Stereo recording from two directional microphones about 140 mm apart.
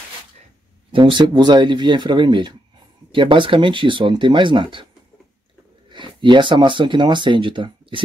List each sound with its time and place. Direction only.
0.9 s speech: 35° right (ahead or behind)
5.9 s speech: 35° right (ahead or behind)